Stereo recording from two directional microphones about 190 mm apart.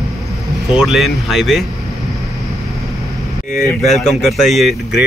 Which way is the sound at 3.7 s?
Centre (ahead or behind).